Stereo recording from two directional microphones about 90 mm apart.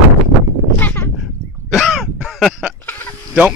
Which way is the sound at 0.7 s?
20° left (ahead or behind).